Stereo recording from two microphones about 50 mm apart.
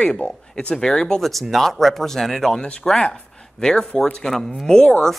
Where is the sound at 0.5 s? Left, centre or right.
Centre.